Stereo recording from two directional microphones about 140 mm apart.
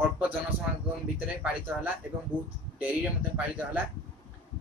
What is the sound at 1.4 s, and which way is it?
Speech, 10° right (ahead or behind).